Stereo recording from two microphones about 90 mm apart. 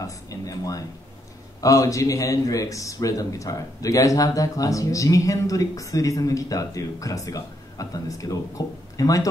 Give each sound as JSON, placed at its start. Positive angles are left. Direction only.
{"t": 0.0, "sound": "a man's voice", "side_deg": 40}